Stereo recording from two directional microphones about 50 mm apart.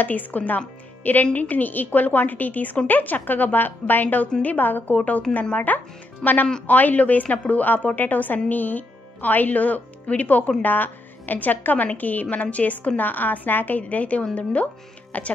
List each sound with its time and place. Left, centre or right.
0.0 s a woman's voice: left